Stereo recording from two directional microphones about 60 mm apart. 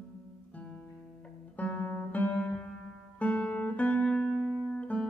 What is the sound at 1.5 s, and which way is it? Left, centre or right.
Guitar, left.